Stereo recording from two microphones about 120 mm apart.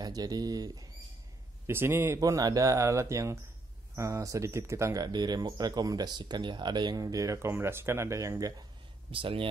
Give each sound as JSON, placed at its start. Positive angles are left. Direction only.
{"t": 0.0, "sound": "speech", "side_deg": -35}
{"t": 1.7, "sound": "speech", "side_deg": -20}
{"t": 5.0, "sound": "speech", "side_deg": -35}
{"t": 9.1, "sound": "speech", "side_deg": -50}